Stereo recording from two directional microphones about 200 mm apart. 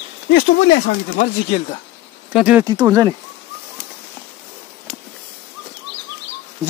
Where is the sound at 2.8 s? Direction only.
15° right (ahead or behind).